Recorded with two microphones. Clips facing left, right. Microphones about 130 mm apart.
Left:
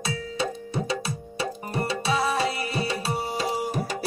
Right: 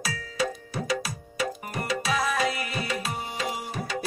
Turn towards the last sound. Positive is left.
turn(degrees=40)  # may be behind; listen again after turning